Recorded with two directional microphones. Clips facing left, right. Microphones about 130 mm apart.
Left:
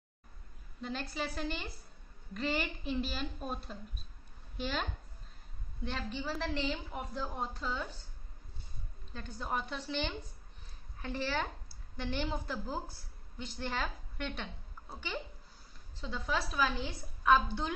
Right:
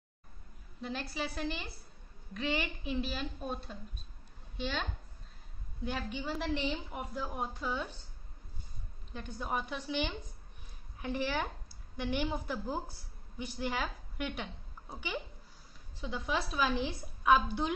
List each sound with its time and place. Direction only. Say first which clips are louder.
0.7 s a woman's voice: even; 5° right (ahead or behind)
5.9 s a woman's voice: right 1 dB; 10° right (ahead or behind)
6.4 s a woman's voice: right 2 dB; 15° right (ahead or behind)
9.1 s a woman's voice: right 1 dB; 15° right (ahead or behind)